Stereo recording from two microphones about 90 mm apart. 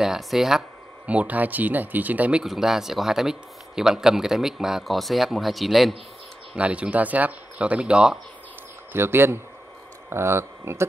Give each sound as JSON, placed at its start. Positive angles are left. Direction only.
{"t": 0.0, "sound": "speech", "side_deg": -5}
{"t": 2.4, "sound": "speech", "side_deg": -5}
{"t": 6.5, "sound": "speech", "side_deg": -15}
{"t": 8.9, "sound": "speech", "side_deg": -25}